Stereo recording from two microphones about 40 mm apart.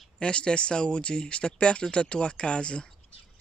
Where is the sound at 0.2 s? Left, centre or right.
Left.